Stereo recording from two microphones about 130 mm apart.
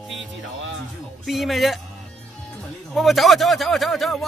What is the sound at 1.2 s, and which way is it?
Speech, centre (ahead or behind).